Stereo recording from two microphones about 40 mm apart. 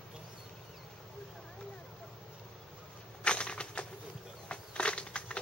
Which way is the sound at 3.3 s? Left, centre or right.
Left.